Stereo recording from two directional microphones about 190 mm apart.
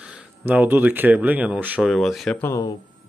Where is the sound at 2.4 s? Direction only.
15° left (ahead or behind).